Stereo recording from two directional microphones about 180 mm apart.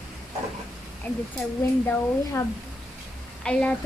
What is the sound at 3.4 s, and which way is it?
Speech, 5° left (ahead or behind).